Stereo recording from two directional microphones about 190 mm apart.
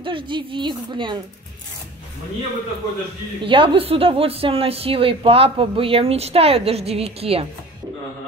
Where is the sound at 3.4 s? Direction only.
25° right (ahead or behind).